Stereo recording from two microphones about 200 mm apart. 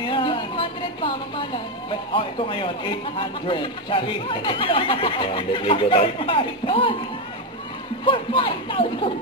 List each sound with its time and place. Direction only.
0.0 s a sound: 25° left (ahead or behind)
1.9 s speech: 25° left (ahead or behind)
8.0 s speech: 25° left (ahead or behind)